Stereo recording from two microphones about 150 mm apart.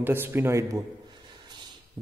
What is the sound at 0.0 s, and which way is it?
Speech, 15° right (ahead or behind).